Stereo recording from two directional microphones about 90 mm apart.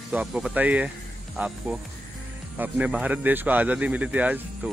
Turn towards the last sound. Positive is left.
turn(degrees=-15)  # may be behind; listen again after turning